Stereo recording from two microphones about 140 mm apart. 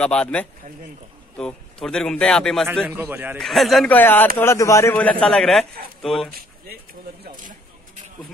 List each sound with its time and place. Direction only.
0.0 s a man's voice: 5° left (ahead or behind)
2.9 s a man's voice: 15° right (ahead or behind)
3.3 s a man's voice: centre (ahead or behind)
3.9 s a man's voice: 15° left (ahead or behind)
4.9 s a man's voice: 10° left (ahead or behind)